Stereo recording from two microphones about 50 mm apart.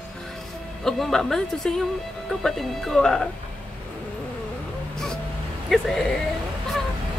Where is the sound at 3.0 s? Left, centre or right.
Centre.